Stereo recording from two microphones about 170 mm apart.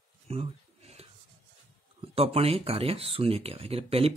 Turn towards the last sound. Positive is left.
turn(degrees=-35)  # may be behind; listen again after turning